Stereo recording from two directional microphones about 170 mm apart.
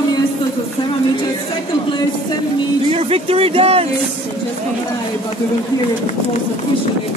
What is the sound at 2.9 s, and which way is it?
Speech, 35° right (ahead or behind).